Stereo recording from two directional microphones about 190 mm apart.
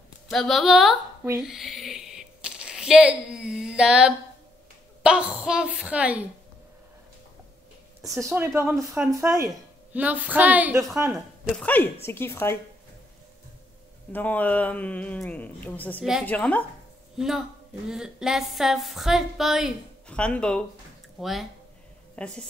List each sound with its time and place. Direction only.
0.3 s a woman's voice: centre (ahead or behind)
1.4 s a sound: centre (ahead or behind)
5.0 s a woman's voice: 5° right (ahead or behind)
8.0 s a woman's voice: 15° right (ahead or behind)
11.1 s a woman's voice: 5° left (ahead or behind)
14.1 s a woman's voice: 10° left (ahead or behind)
17.8 s a woman's voice: 5° right (ahead or behind)